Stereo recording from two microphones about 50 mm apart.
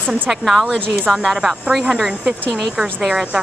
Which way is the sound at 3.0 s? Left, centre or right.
Centre.